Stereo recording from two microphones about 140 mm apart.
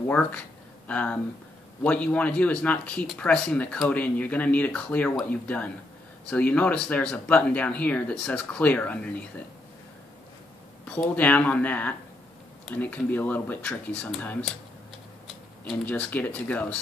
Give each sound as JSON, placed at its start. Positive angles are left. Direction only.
{"t": 0.1, "sound": "speech", "side_deg": 10}
{"t": 10.9, "sound": "speech", "side_deg": 10}
{"t": 15.7, "sound": "speech", "side_deg": 10}